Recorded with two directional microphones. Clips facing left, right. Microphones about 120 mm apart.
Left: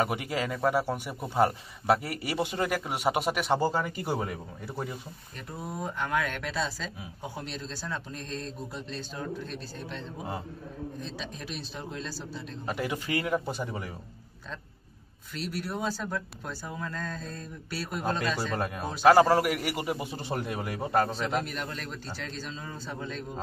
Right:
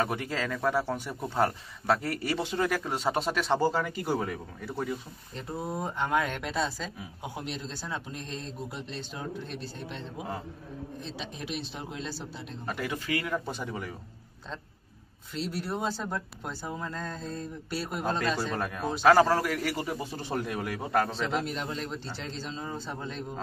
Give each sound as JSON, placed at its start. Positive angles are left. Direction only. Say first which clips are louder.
{"t": 0.0, "sound": "a man's voice", "louder": "left 1 dB", "side_deg": 15}
{"t": 5.6, "sound": "a man's voice", "louder": "right 2 dB", "side_deg": -25}
{"t": 12.6, "sound": "a man's voice", "louder": "left 1 dB", "side_deg": 15}
{"t": 13.5, "sound": "a man's voice", "louder": "left 1 dB", "side_deg": 10}
{"t": 15.3, "sound": "speech", "louder": "right 1 dB", "side_deg": -20}
{"t": 18.6, "sound": "a man's voice", "louder": "left 1 dB", "side_deg": 10}
{"t": 21.5, "sound": "speech", "louder": "right 3 dB", "side_deg": -20}